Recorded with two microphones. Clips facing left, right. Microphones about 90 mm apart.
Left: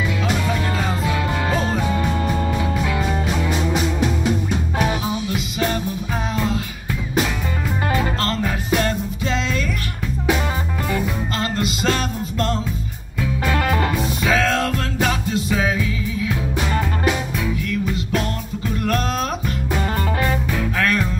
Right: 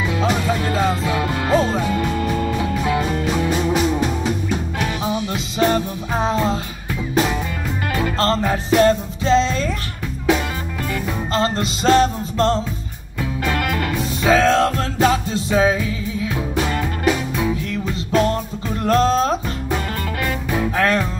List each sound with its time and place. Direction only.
0.2 s music: 35° right (ahead or behind)
1.9 s music: 30° left (ahead or behind)
5.3 s music: 30° right (ahead or behind)
8.2 s music: 35° right (ahead or behind)
11.3 s music: 30° right (ahead or behind)
13.6 s music: 30° left (ahead or behind)
14.2 s music: 30° right (ahead or behind)
17.4 s music: 25° right (ahead or behind)
20.7 s music: 25° right (ahead or behind)